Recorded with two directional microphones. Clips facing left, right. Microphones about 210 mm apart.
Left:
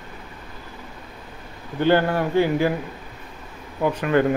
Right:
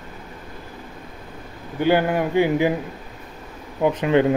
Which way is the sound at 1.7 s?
10° right (ahead or behind).